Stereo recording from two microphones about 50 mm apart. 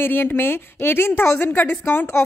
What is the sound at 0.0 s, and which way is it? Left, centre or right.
A woman's voice, left.